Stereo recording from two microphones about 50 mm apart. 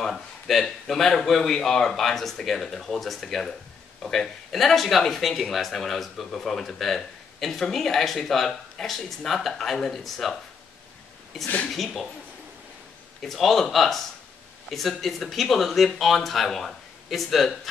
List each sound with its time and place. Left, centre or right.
0.0 s speech: centre
11.4 s speech: left
11.7 s speech: centre
13.2 s speech: centre